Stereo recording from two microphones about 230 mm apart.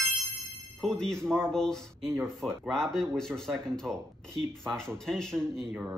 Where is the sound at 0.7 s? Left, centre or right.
Centre.